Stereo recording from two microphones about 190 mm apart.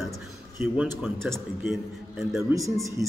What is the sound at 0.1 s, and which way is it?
A man's voice, 5° right (ahead or behind).